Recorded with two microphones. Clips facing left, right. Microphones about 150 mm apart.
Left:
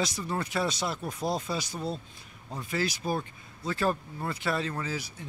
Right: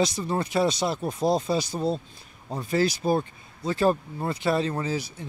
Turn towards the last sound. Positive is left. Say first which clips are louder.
# right 6 dB
turn(degrees=-25)  # may be behind; listen again after turning